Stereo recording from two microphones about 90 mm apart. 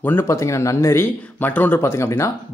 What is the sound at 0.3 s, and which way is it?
Speech, 35° left (ahead or behind).